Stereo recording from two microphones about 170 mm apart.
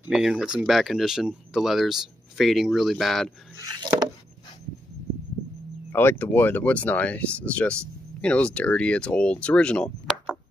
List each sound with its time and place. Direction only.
0.0 s speech: 5° right (ahead or behind)
3.5 s a sound: 20° right (ahead or behind)
5.9 s speech: 15° left (ahead or behind)